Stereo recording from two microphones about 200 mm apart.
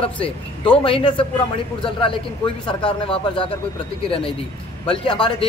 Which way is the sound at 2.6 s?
25° left (ahead or behind).